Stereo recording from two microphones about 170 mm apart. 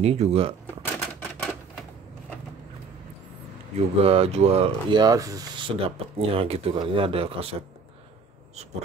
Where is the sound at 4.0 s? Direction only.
35° right (ahead or behind).